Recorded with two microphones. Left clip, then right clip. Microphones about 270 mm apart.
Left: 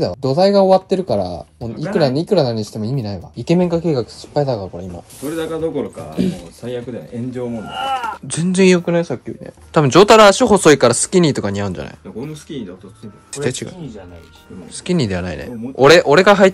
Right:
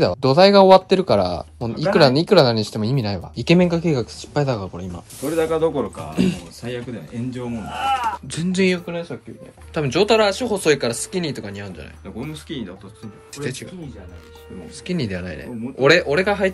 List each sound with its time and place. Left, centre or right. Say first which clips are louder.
0.2 s speech: right 1 dB; centre
1.7 s speech: right 2 dB; centre
2.1 s speech: right 1 dB; centre
3.3 s speech: even; centre
3.7 s speech: left 4 dB; right
4.7 s speech: left 3 dB; centre
8.7 s speech: left 10 dB; left
12.2 s speech: left 2 dB; centre
13.4 s speech: left 7 dB; centre
14.9 s speech: left 7 dB; centre